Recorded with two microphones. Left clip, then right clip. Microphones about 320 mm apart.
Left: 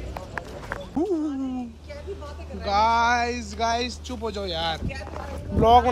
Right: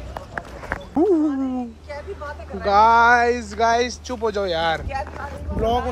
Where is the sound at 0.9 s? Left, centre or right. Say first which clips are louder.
Right 8 dB; right.